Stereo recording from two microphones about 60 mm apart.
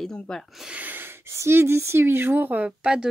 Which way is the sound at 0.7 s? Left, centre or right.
Right.